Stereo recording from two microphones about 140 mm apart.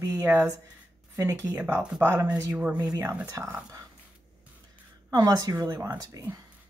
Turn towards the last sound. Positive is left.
turn(degrees=-25)  # may be behind; listen again after turning